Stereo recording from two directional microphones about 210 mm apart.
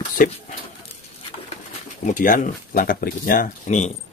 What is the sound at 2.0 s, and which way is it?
Speech, 40° left (ahead or behind).